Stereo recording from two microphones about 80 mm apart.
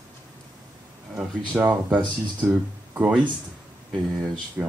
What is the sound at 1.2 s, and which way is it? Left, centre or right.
Speech, right.